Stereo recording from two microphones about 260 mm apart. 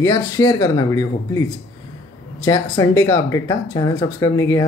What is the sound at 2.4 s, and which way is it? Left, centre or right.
Speech, centre.